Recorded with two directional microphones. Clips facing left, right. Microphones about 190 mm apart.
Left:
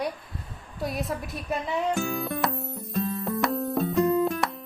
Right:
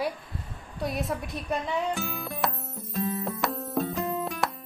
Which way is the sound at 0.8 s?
Centre (ahead or behind).